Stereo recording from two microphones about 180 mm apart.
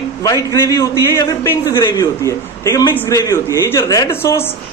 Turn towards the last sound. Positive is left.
turn(degrees=15)  # may be behind; listen again after turning